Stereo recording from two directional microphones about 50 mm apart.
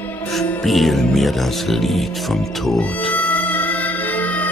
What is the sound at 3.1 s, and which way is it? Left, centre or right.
Music, left.